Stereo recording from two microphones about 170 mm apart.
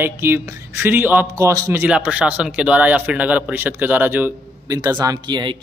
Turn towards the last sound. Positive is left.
turn(degrees=-25)  # may be behind; listen again after turning